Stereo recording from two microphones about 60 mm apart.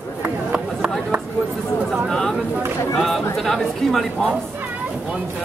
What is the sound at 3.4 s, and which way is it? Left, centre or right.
Speech, centre.